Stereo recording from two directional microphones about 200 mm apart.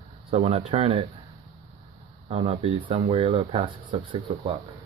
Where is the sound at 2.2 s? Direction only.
30° right (ahead or behind).